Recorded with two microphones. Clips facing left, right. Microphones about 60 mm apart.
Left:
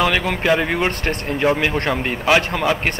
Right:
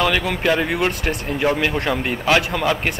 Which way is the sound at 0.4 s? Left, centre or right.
Centre.